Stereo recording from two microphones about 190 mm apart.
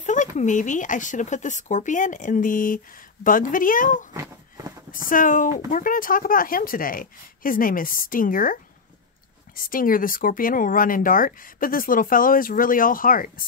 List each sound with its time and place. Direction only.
0.0 s speech: 40° left (ahead or behind)
4.1 s a sound: 15° right (ahead or behind)
4.9 s speech: 45° left (ahead or behind)
9.7 s speech: 45° left (ahead or behind)